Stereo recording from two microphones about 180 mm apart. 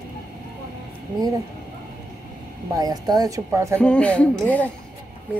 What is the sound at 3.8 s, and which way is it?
Speech, 5° left (ahead or behind).